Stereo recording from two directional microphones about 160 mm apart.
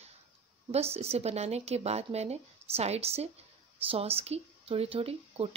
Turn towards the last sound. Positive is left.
turn(degrees=-35)  # may be behind; listen again after turning